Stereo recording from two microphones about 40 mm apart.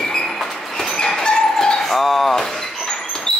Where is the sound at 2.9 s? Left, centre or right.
Centre.